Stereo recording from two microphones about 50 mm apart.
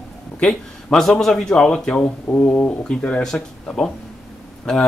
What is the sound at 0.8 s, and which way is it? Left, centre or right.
A man's voice, centre.